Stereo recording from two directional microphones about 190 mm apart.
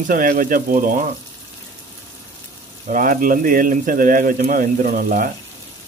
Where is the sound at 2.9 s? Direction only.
45° right (ahead or behind).